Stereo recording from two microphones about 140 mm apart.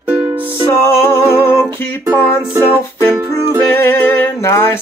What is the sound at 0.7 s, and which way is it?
Music, 20° left (ahead or behind).